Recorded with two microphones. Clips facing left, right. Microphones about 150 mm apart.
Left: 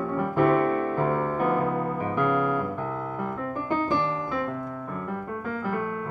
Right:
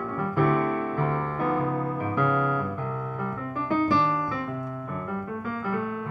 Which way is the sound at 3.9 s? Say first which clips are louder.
Right 2 dB; 20° left (ahead or behind).